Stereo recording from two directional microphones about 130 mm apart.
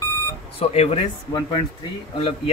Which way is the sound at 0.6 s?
50° left (ahead or behind).